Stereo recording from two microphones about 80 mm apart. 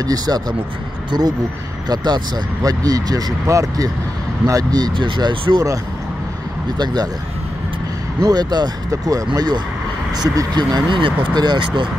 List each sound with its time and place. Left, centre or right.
0.0 s speech: right
4.9 s speech: right
6.8 s speech: right
8.2 s speech: right
8.9 s speech: right